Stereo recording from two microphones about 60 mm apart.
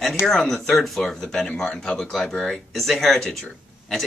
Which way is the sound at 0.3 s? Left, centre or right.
Centre.